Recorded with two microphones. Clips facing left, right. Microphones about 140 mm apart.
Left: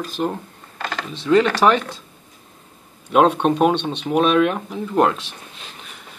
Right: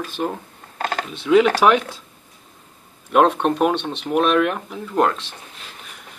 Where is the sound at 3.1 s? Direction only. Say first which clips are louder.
Left 1 dB; centre (ahead or behind).